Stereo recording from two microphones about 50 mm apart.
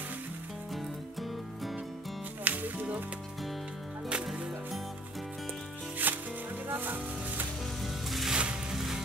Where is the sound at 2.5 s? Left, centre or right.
Right.